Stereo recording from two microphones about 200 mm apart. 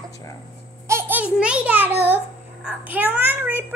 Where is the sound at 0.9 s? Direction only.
10° right (ahead or behind).